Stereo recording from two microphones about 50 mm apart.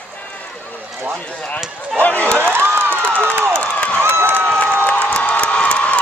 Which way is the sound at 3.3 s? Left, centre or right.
Right.